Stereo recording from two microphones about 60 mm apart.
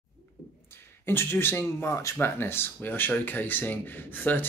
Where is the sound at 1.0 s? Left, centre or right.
Left.